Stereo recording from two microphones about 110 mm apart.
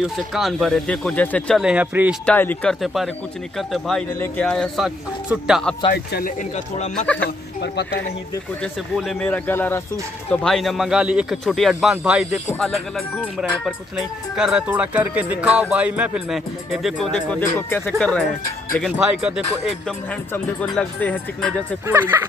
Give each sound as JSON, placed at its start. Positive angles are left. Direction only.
{"t": 0.0, "sound": "speech", "side_deg": 0}
{"t": 1.5, "sound": "speech", "side_deg": -5}
{"t": 2.2, "sound": "speech", "side_deg": 15}
{"t": 2.7, "sound": "speech", "side_deg": 0}
{"t": 8.9, "sound": "speech", "side_deg": 10}
{"t": 10.3, "sound": "speech", "side_deg": 5}
{"t": 11.4, "sound": "speech", "side_deg": 5}
{"t": 11.9, "sound": "speech", "side_deg": -10}
{"t": 13.4, "sound": "speech", "side_deg": -5}
{"t": 17.4, "sound": "speech", "side_deg": 20}
{"t": 17.9, "sound": "speech", "side_deg": 10}
{"t": 18.8, "sound": "speech", "side_deg": -5}
{"t": 20.7, "sound": "speech", "side_deg": 10}
{"t": 21.8, "sound": "speech", "side_deg": -20}